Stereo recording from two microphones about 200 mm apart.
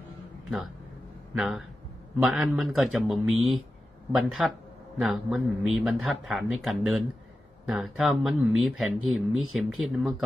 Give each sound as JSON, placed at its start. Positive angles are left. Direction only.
{"t": 1.3, "sound": "speech", "side_deg": 0}